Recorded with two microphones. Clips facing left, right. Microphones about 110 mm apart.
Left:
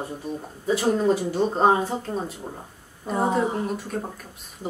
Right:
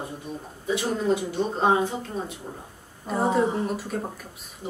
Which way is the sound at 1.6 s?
35° left (ahead or behind).